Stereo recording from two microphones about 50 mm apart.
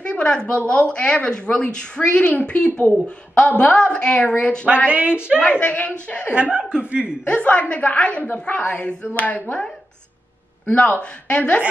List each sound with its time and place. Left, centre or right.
0.0 s a sound: centre
0.7 s speech: left
4.8 s speech: right
5.4 s speech: left
5.7 s speech: left
6.4 s speech: right
7.2 s speech: left
10.7 s speech: left